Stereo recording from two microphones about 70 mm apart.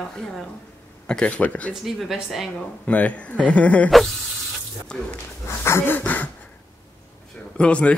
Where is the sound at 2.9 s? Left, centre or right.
Centre.